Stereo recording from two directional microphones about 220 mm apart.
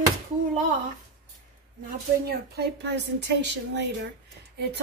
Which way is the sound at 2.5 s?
50° right (ahead or behind).